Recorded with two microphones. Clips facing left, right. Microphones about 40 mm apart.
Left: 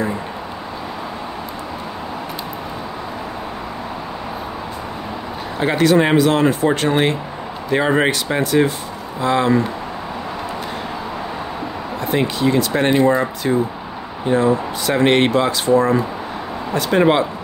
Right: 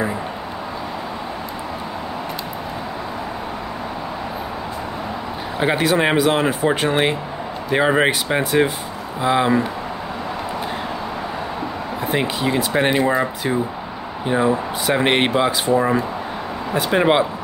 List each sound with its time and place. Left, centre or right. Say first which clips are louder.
5.6 s speech: left 3 dB; centre
12.1 s speech: left 3 dB; centre